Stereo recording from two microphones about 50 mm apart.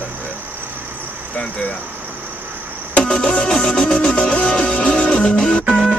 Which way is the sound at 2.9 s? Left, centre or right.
Left.